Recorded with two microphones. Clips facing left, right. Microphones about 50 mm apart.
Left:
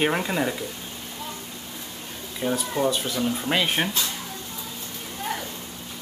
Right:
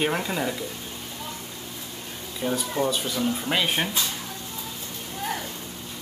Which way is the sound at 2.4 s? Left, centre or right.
Centre.